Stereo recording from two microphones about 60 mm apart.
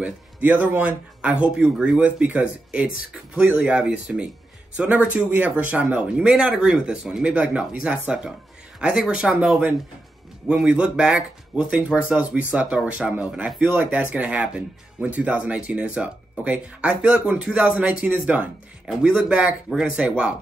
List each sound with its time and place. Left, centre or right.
0.0 s speech: right
2.0 s speech: right
5.9 s speech: centre